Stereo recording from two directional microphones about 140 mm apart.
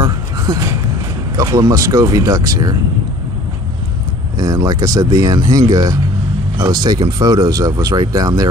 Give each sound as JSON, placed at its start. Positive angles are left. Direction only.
{"t": 0.0, "sound": "a sound", "side_deg": -25}
{"t": 1.3, "sound": "speech", "side_deg": -25}
{"t": 4.4, "sound": "speech", "side_deg": -30}